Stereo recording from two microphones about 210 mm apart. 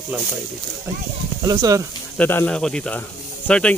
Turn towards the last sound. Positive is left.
turn(degrees=5)  # may be behind; listen again after turning